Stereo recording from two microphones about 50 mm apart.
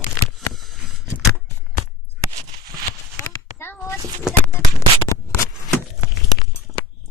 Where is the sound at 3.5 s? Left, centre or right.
Left.